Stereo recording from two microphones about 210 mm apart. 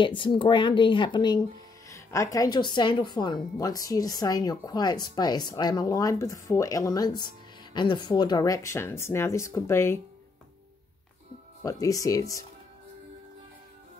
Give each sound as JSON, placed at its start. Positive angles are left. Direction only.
{"t": 0.0, "sound": "a woman's voice", "side_deg": 25}
{"t": 11.6, "sound": "a woman's voice", "side_deg": 15}